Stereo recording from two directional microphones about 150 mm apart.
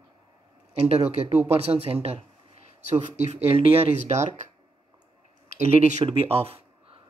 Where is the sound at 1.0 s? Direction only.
45° right (ahead or behind).